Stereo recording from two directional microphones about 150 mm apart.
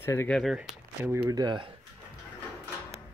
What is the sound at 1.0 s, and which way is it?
Speech, 15° right (ahead or behind).